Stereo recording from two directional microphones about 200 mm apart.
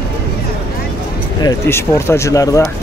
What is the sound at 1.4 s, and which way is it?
Speech, 15° left (ahead or behind).